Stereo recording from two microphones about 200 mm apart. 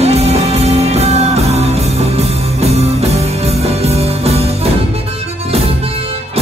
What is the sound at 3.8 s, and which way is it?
Music, 30° right (ahead or behind).